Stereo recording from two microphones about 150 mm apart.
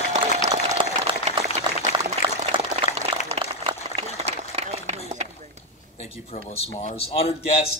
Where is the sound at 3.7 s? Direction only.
30° right (ahead or behind).